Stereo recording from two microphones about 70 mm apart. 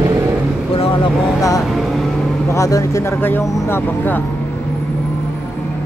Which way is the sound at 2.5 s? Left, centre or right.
Left.